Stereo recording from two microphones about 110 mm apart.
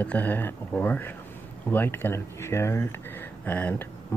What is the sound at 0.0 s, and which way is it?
Speech, 15° left (ahead or behind).